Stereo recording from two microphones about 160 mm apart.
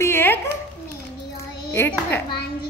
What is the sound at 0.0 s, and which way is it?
Dog, 15° left (ahead or behind).